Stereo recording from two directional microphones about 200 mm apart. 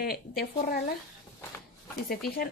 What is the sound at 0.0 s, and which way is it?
Speech, 50° left (ahead or behind).